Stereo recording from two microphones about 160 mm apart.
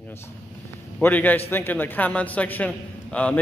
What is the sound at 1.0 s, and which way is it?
A man's voice, 10° left (ahead or behind).